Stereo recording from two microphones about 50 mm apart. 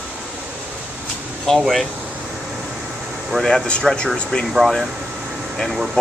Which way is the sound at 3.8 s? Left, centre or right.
Centre.